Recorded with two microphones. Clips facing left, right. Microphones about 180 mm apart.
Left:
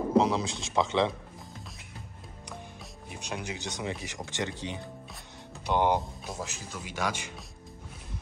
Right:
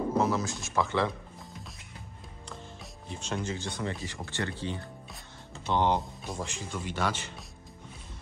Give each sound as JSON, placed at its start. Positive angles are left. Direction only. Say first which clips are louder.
{"t": 0.2, "sound": "a man's voice", "louder": "left 1 dB", "side_deg": 15}
{"t": 3.1, "sound": "speech", "louder": "right 3 dB", "side_deg": 15}